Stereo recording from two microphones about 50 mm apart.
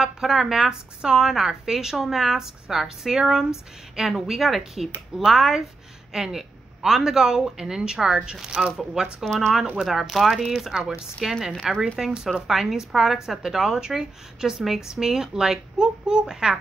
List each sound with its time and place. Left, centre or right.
0.0 s a woman's voice: centre
9.2 s speech: centre
9.8 s a woman's voice: centre